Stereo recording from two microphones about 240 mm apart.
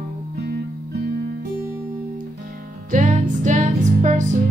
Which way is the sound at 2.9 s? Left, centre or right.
Right.